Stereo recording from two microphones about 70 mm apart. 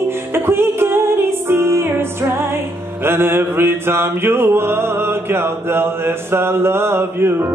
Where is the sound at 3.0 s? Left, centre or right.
Right.